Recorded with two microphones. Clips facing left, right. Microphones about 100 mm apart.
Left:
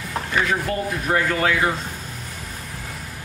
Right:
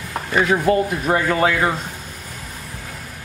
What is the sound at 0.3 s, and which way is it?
Speech, 25° right (ahead or behind).